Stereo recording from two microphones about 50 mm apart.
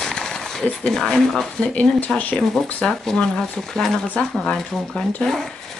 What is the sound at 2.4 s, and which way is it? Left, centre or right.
Speech, centre.